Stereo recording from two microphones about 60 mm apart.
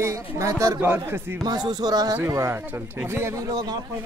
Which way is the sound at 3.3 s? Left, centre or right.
Right.